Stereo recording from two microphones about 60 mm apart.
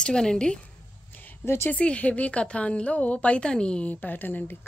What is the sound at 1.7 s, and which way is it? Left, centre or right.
A woman's voice, left.